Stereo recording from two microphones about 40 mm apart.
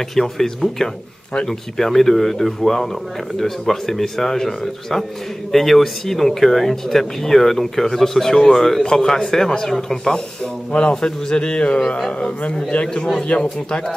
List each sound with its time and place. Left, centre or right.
0.1 s a man's voice: centre
12.7 s a man's voice: left
13.4 s a man's voice: left